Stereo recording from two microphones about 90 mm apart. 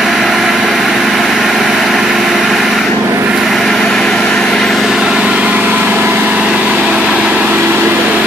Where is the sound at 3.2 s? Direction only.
5° right (ahead or behind).